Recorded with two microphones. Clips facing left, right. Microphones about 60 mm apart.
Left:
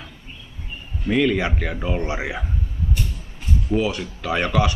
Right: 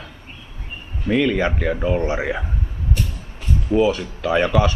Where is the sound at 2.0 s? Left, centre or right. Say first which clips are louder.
Right 4 dB; centre.